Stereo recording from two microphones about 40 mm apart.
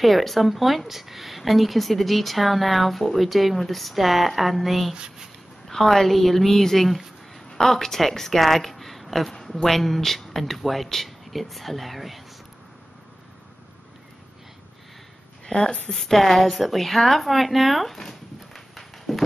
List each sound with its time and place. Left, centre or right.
0.0 s speech: centre
4.9 s speech: centre
5.7 s a woman's voice: centre
15.4 s a woman's voice: centre